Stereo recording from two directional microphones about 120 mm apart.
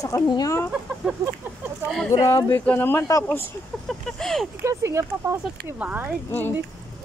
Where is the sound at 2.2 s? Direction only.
20° left (ahead or behind).